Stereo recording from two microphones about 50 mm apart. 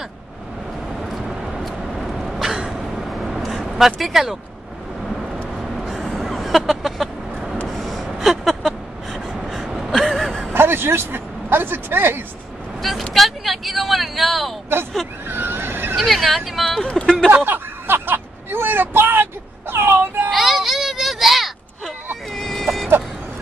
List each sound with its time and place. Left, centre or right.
1.0 s vehicle: centre
5.8 s a sound: centre
6.1 s vehicle: centre
9.4 s gasp: centre
10.5 s speech: right
13.1 s vehicle: centre
15.2 s neigh: right
16.0 s speech: centre
17.0 s a sound: centre
17.5 s a sound: right
20.2 s a sound: centre
22.3 s vehicle: centre